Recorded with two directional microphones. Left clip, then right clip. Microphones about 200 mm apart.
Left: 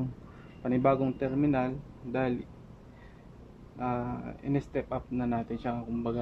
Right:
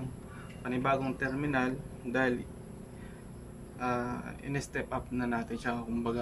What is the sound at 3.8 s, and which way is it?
Speech, 15° left (ahead or behind).